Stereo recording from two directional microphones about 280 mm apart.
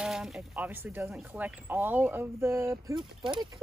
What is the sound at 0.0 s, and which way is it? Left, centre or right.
Speech, centre.